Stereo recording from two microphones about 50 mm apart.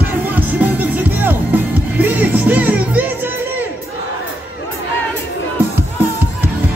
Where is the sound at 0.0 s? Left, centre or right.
Right.